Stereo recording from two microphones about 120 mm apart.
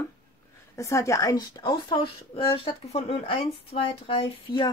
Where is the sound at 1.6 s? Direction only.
40° left (ahead or behind).